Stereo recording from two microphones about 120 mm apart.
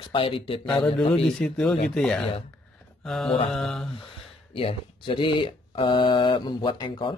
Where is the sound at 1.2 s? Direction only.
5° left (ahead or behind).